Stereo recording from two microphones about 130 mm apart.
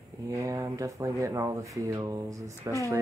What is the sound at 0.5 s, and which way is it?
Speech, 25° right (ahead or behind).